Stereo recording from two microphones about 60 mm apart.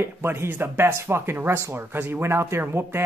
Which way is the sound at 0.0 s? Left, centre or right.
Right.